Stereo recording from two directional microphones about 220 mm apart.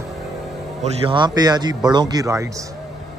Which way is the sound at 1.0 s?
20° right (ahead or behind).